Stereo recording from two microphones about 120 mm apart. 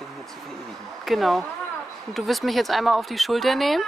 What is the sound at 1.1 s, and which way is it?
Speech, centre (ahead or behind).